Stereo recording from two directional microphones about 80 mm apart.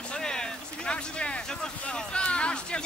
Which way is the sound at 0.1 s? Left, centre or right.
Centre.